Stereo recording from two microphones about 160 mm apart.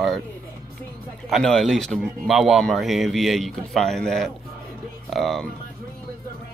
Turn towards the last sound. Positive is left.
turn(degrees=0)  # may be behind; listen again after turning